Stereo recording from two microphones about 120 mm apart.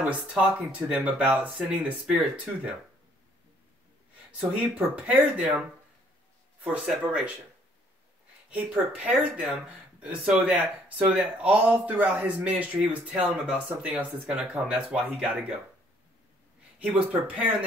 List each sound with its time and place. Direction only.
0.0 s speech: 10° right (ahead or behind)
4.4 s speech: 10° right (ahead or behind)
8.5 s speech: 10° right (ahead or behind)
10.0 s speech: 10° right (ahead or behind)
16.8 s speech: 10° right (ahead or behind)